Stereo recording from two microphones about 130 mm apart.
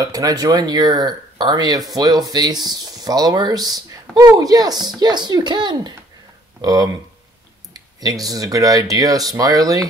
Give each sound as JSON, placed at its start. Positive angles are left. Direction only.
{"t": 0.0, "sound": "speech", "side_deg": -25}